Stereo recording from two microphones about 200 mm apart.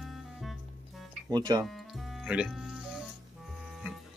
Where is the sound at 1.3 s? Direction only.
20° right (ahead or behind).